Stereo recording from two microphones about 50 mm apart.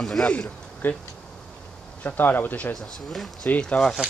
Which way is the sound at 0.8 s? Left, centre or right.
Left.